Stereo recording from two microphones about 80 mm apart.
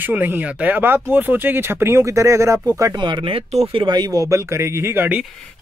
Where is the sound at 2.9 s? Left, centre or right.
Right.